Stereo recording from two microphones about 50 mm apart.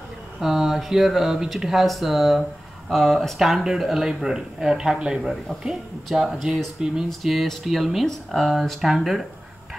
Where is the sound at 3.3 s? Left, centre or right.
Centre.